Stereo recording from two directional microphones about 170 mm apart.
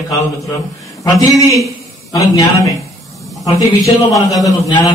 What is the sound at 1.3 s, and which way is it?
A man's voice, 20° left (ahead or behind).